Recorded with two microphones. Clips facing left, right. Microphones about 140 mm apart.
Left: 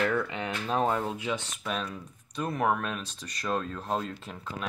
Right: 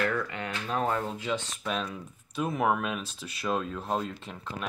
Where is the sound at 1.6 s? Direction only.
Centre (ahead or behind).